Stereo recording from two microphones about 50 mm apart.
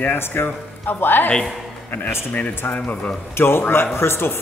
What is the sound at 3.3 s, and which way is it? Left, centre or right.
Speech, left.